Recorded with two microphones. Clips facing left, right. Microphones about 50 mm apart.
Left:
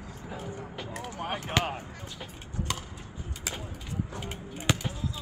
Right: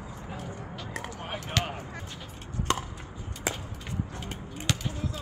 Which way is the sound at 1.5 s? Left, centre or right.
Left.